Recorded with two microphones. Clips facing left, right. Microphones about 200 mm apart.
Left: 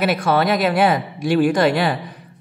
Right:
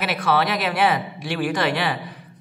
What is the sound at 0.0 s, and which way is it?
A woman's voice, 45° left (ahead or behind).